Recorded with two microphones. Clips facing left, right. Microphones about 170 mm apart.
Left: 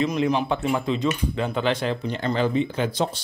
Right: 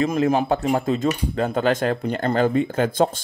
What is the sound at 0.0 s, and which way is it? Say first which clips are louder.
Speech: right 3 dB; 45° right (ahead or behind).